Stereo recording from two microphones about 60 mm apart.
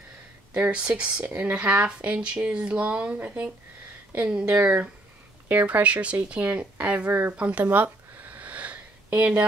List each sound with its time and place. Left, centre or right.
0.7 s speech: centre